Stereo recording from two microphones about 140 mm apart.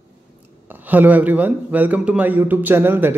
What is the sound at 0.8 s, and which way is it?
A man's voice, 10° right (ahead or behind).